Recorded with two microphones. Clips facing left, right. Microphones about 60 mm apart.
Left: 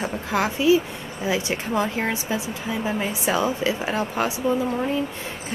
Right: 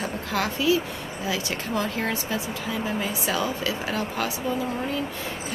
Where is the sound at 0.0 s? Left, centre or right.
Centre.